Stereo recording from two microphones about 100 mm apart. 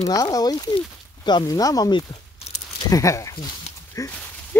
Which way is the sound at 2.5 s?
90° left.